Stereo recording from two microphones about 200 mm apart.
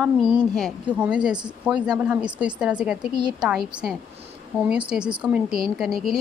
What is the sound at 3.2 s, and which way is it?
Speech, 20° right (ahead or behind).